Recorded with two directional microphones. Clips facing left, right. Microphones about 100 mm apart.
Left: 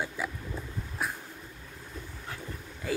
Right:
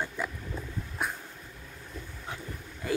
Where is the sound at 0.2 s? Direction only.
5° left (ahead or behind).